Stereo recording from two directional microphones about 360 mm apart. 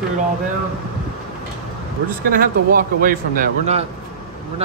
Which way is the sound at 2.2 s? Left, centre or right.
Right.